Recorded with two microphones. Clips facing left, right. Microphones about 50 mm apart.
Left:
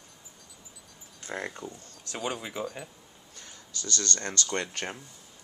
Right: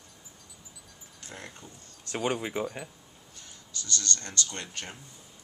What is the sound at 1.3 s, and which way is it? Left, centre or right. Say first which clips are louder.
Speech: left 9 dB; left.